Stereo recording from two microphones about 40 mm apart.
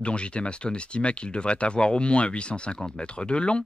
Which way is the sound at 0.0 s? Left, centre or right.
Left.